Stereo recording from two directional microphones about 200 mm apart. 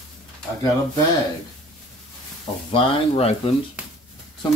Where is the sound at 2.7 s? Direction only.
25° left (ahead or behind).